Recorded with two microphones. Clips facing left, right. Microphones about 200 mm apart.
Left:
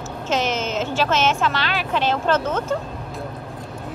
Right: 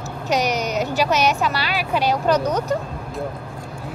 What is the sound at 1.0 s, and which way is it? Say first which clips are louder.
A woman's voice: left 1 dB; 10° right (ahead or behind).